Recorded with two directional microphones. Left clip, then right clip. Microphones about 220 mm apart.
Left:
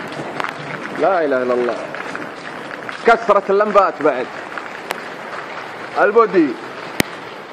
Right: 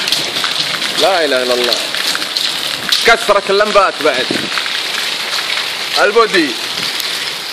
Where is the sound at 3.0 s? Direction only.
20° right (ahead or behind).